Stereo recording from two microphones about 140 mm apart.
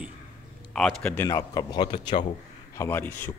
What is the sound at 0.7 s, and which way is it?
Speech, 5° left (ahead or behind).